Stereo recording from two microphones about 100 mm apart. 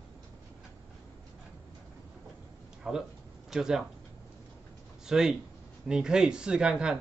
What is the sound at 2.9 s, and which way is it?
Speech, 5° right (ahead or behind).